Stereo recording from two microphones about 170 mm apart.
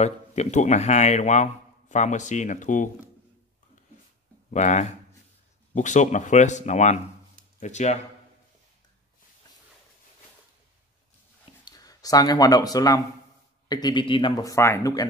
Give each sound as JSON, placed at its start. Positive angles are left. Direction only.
{"t": 0.0, "sound": "a man's voice", "side_deg": 40}
{"t": 4.5, "sound": "a man's voice", "side_deg": 45}
{"t": 11.6, "sound": "speech", "side_deg": 20}